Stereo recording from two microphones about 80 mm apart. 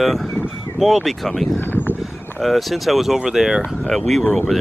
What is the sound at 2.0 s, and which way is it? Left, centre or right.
Speech, centre.